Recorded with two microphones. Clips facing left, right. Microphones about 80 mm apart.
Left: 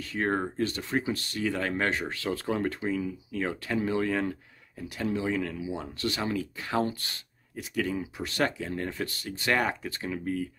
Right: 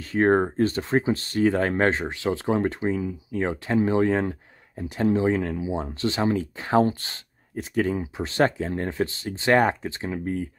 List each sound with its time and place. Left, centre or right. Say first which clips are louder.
0.1 s speech: right 9 dB; right